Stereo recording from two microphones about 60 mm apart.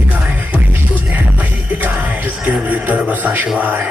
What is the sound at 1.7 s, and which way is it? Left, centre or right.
Music, right.